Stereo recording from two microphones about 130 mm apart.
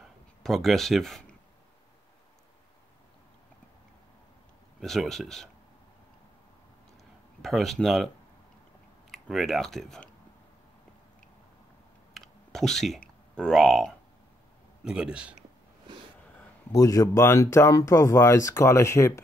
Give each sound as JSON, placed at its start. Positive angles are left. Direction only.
{"t": 0.4, "sound": "speech", "side_deg": 0}
{"t": 4.7, "sound": "speech", "side_deg": 0}
{"t": 7.4, "sound": "speech", "side_deg": 0}
{"t": 9.1, "sound": "speech", "side_deg": 0}
{"t": 12.1, "sound": "a sound", "side_deg": 0}
{"t": 14.9, "sound": "a man's voice", "side_deg": -5}
{"t": 16.7, "sound": "speech", "side_deg": 25}